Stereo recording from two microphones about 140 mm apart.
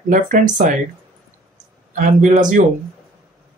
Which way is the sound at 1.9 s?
65° right (ahead or behind).